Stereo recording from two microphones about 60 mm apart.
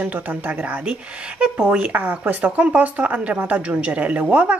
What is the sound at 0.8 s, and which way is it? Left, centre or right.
Speech, centre.